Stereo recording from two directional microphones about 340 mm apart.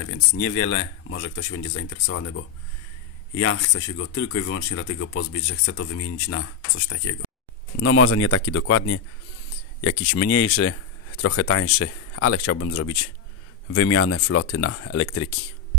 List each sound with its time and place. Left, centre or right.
0.0 s speech: left
7.8 s speech: left